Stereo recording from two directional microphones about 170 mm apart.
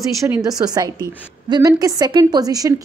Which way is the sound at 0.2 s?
20° right (ahead or behind).